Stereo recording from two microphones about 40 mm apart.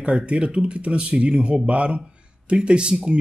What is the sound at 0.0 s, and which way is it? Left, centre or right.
Speech, right.